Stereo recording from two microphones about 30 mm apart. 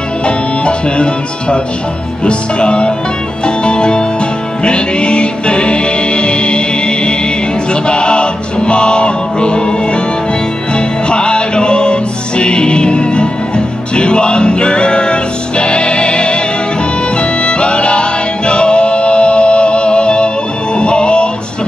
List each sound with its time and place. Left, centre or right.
0.2 s music: left
11.1 s music: left